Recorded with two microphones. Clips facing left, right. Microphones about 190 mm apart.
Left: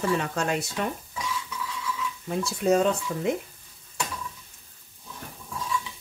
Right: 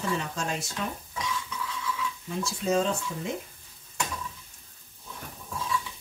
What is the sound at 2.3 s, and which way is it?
Speech, 60° left (ahead or behind).